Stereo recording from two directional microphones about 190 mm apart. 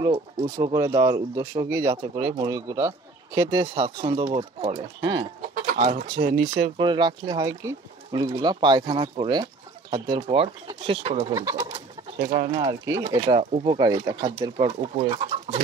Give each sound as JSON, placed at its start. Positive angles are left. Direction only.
{"t": 0.0, "sound": "speech", "side_deg": -20}
{"t": 5.4, "sound": "bird", "side_deg": -40}
{"t": 6.8, "sound": "speech", "side_deg": -25}
{"t": 11.3, "sound": "speech", "side_deg": -20}